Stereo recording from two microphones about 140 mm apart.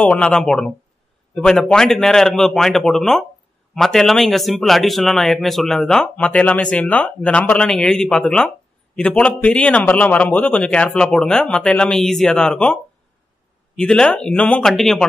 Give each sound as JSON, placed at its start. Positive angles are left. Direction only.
{"t": 0.0, "sound": "a man's voice", "side_deg": 10}
{"t": 13.7, "sound": "speech", "side_deg": 5}